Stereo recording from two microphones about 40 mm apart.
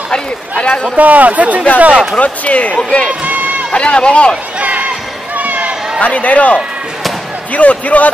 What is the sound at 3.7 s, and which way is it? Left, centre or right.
Speech, left.